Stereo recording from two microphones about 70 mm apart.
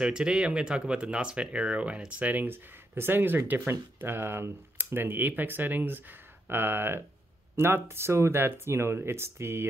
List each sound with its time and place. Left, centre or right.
0.0 s speech: centre; by 9.7 s right